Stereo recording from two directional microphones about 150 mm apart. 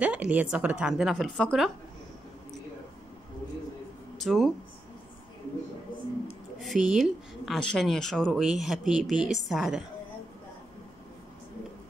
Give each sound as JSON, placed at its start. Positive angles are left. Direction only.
{"t": 0.0, "sound": "a woman's voice", "side_deg": -10}
{"t": 4.2, "sound": "speech", "side_deg": 0}
{"t": 6.6, "sound": "a woman's voice", "side_deg": 0}